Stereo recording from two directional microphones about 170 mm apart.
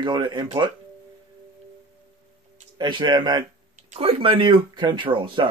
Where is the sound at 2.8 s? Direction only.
30° right (ahead or behind).